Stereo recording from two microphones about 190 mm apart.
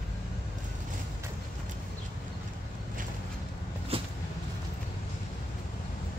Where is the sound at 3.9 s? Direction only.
30° right (ahead or behind).